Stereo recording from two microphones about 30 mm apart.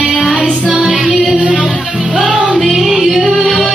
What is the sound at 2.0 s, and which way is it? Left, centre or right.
Music, right.